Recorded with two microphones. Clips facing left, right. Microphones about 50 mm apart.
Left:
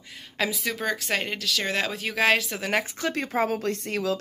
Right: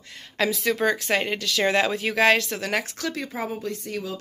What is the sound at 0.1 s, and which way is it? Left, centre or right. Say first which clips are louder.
Speech: right 3 dB; centre.